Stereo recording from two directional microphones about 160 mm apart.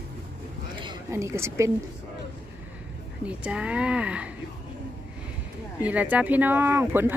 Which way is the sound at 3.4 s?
5° right (ahead or behind).